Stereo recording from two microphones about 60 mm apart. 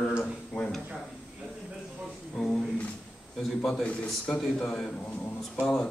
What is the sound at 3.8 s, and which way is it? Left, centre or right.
Speech, centre.